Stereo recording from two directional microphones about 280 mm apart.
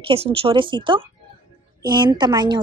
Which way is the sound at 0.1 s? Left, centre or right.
Right.